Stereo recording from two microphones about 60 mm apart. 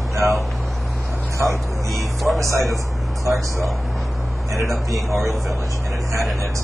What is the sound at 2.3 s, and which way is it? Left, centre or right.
Speech, right.